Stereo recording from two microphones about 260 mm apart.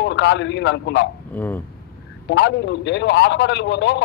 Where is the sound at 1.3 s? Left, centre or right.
Centre.